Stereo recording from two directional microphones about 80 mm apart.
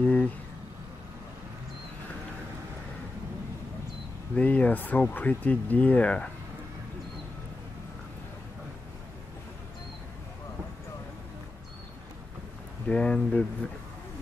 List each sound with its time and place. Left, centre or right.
0.0 s a sound: centre
4.4 s speech: centre
12.8 s speech: centre